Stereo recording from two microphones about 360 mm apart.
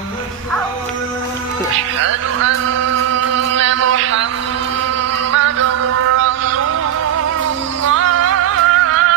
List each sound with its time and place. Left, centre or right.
2.0 s a sound: right
3.3 s music: right
5.3 s music: right
7.9 s music: right